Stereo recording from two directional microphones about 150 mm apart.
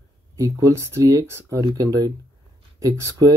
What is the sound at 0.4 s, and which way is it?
Speech, 20° right (ahead or behind).